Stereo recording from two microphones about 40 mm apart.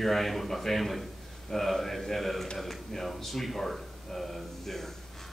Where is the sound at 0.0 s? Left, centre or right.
Centre.